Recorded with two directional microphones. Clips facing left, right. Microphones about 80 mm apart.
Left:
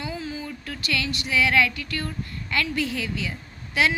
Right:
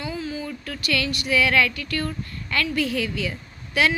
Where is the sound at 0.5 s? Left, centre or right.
Left.